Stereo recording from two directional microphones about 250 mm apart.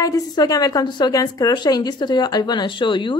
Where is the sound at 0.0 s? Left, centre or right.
Centre.